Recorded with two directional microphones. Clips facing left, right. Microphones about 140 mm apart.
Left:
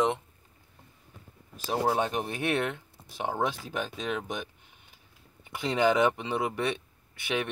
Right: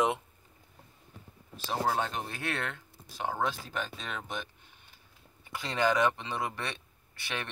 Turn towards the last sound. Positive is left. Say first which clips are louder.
# left 7 dB
turn(degrees=15)  # may be behind; listen again after turning